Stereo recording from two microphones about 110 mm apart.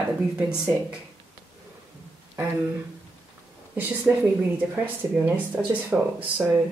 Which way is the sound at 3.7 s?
15° right (ahead or behind).